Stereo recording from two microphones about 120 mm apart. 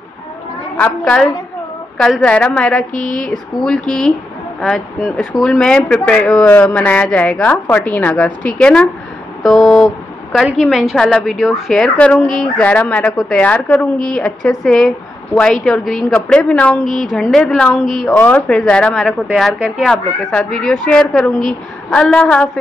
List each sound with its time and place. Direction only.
0.7 s a woman's voice: 10° left (ahead or behind)
2.0 s a woman's voice: centre (ahead or behind)
2.9 s a woman's voice: 90° left
3.2 s a woman's voice: 5° left (ahead or behind)
9.4 s a sound: centre (ahead or behind)
10.3 s a woman's voice: 5° right (ahead or behind)
16.8 s a woman's voice: 90° left
17.1 s a woman's voice: centre (ahead or behind)
19.0 s a woman's voice: centre (ahead or behind)